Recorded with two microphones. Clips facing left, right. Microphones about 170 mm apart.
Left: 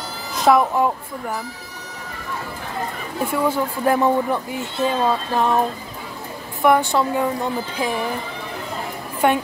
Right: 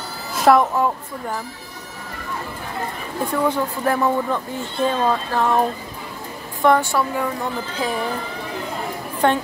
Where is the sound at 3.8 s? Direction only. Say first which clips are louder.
Left 3 dB; 20° left (ahead or behind).